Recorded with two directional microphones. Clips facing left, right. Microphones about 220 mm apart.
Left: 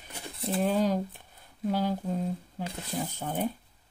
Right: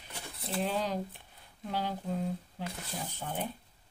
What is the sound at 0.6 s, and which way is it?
Speech, 45° left (ahead or behind).